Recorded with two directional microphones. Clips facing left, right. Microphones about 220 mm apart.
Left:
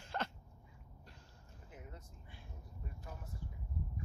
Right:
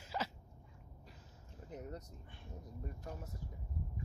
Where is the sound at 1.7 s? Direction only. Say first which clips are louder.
Right 8 dB; 40° right (ahead or behind).